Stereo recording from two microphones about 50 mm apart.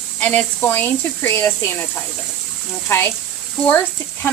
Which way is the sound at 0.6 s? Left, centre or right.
Left.